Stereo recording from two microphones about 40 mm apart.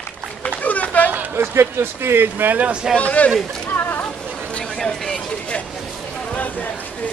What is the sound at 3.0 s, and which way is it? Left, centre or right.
Speech, left.